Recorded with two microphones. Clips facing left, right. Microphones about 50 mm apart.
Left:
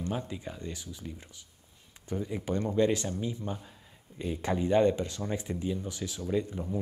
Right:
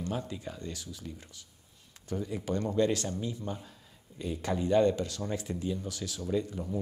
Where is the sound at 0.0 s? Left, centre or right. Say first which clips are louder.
Left 1 dB; left.